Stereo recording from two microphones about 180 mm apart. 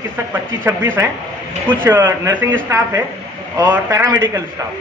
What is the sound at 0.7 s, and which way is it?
A man's voice, 10° right (ahead or behind).